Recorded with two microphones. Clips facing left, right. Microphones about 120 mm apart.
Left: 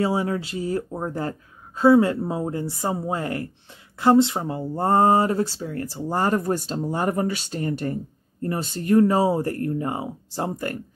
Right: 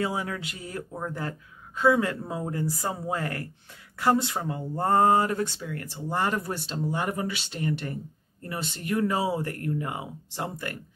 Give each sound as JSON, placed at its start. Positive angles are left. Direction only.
{"t": 0.0, "sound": "speech", "side_deg": 30}